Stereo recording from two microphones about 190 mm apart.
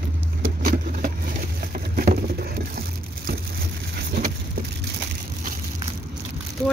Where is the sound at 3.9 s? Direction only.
55° right (ahead or behind).